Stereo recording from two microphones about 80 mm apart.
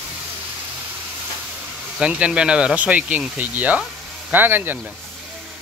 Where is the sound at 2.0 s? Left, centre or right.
Centre.